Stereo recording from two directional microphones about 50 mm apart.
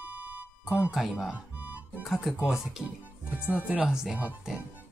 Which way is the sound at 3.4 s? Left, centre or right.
Right.